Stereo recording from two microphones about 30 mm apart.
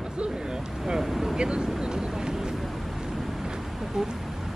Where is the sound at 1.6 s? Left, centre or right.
Right.